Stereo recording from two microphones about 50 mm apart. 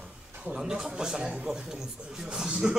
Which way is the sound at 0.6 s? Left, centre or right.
Centre.